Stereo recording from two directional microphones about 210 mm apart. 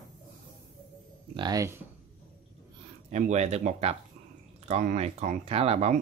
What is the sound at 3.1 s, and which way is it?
Speech, 35° right (ahead or behind).